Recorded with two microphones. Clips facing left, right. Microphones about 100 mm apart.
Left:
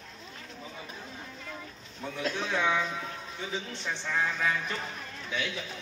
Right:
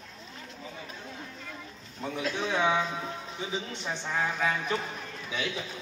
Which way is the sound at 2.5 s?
20° right (ahead or behind).